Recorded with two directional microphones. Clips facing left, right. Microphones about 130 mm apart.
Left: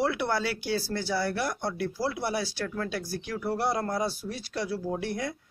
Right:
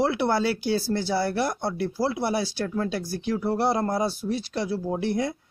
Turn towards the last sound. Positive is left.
turn(degrees=-25)  # may be behind; listen again after turning